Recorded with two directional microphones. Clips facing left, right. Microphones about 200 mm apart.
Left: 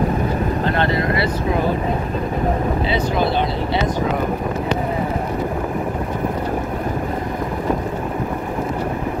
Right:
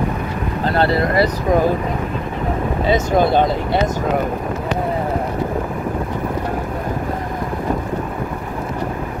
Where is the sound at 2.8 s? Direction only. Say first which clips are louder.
Right 7 dB; 45° right (ahead or behind).